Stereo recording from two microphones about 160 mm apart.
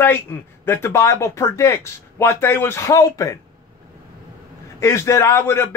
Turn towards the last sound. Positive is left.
turn(degrees=15)  # may be behind; listen again after turning